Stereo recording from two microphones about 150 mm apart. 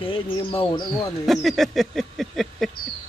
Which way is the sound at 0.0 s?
35° left (ahead or behind).